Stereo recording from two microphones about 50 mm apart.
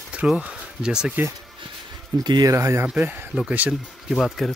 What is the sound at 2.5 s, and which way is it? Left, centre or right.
Speech, right.